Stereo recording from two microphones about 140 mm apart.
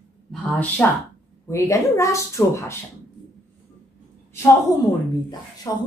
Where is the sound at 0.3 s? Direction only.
10° left (ahead or behind).